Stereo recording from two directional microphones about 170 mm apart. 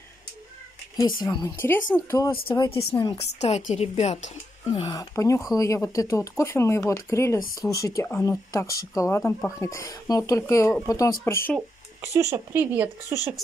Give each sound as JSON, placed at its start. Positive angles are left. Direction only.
{"t": 0.9, "sound": "speech", "side_deg": 25}
{"t": 3.3, "sound": "a woman's voice", "side_deg": 40}
{"t": 4.7, "sound": "speech", "side_deg": 30}
{"t": 5.1, "sound": "speech", "side_deg": 20}
{"t": 12.1, "sound": "speech", "side_deg": -15}